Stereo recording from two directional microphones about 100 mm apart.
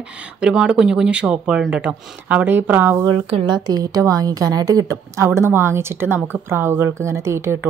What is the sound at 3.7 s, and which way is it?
A woman's voice, 40° right (ahead or behind).